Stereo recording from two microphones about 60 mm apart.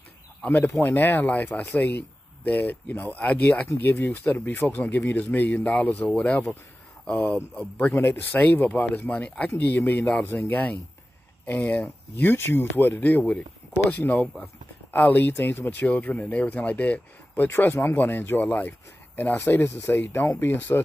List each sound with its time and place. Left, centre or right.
0.5 s speech: left
12.2 s speech: left
14.2 s speech: centre
14.9 s speech: left
20.3 s speech: left